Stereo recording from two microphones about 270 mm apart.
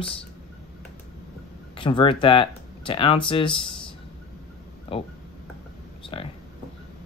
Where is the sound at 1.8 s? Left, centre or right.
Centre.